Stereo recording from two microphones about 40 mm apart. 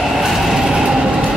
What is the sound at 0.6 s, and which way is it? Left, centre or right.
Train, centre.